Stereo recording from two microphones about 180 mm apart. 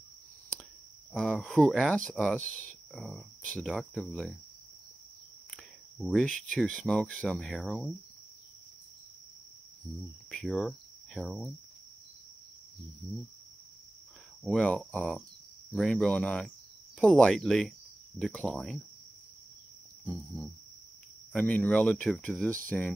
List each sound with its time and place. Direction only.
1.1 s speech: 5° left (ahead or behind)
5.9 s speech: centre (ahead or behind)
10.3 s speech: centre (ahead or behind)
14.4 s speech: 5° left (ahead or behind)
21.3 s speech: 5° left (ahead or behind)